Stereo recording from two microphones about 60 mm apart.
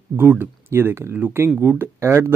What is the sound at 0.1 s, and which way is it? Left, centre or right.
Speech, right.